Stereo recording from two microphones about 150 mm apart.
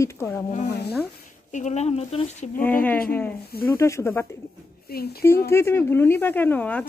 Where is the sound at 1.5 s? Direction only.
55° left (ahead or behind).